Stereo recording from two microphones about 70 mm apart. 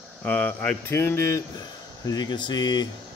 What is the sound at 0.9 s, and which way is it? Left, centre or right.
Speech, left.